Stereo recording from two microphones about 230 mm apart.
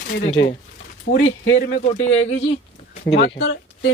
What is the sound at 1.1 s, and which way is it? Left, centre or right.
Speech, left.